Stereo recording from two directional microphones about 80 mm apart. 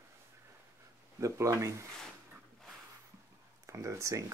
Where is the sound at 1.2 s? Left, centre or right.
Right.